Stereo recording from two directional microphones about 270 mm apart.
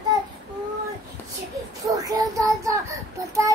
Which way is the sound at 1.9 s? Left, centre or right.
Centre.